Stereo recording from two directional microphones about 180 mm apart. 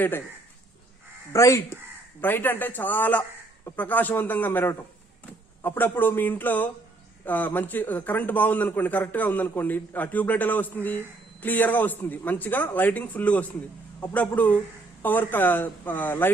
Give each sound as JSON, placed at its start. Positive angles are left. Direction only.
{"t": 1.3, "sound": "a man's voice", "side_deg": 15}